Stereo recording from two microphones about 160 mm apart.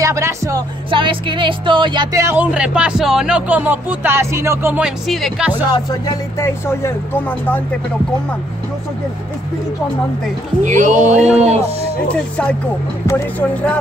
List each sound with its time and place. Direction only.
0.0 s music: 20° right (ahead or behind)
0.8 s speech: 30° right (ahead or behind)
2.1 s speech: 10° right (ahead or behind)
5.7 s speech: 25° left (ahead or behind)
10.6 s speech: 50° right (ahead or behind)
12.1 s speech: 5° left (ahead or behind)